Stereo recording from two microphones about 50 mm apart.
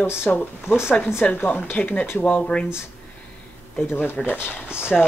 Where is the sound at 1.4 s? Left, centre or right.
Left.